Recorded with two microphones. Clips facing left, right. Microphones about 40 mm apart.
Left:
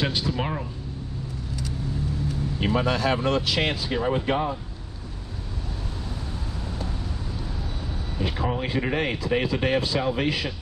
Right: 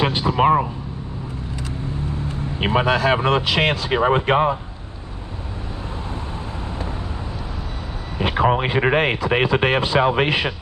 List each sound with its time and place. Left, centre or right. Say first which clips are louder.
0.0 s speech: right 9 dB; right
2.2 s vehicle: right 3 dB; right
2.9 s speech: right 8 dB; centre
3.2 s speech: right 5 dB; right
3.8 s speech: right 7 dB; right
8.2 s a sound: right 9 dB; centre
8.5 s speech: right 9 dB; right